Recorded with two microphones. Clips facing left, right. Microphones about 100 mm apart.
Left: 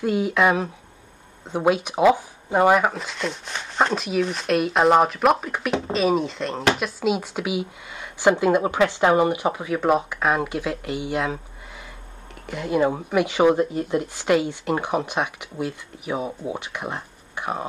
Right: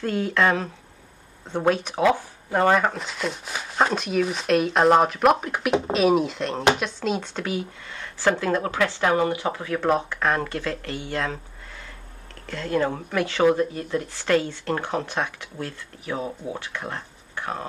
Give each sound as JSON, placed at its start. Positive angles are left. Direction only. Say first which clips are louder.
{"t": 0.0, "sound": "speech", "louder": "left 2 dB", "side_deg": 10}
{"t": 12.4, "sound": "speech", "louder": "left 3 dB", "side_deg": 15}